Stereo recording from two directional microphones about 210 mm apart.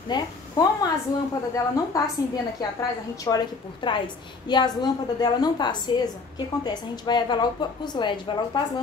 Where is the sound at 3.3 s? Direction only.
20° left (ahead or behind).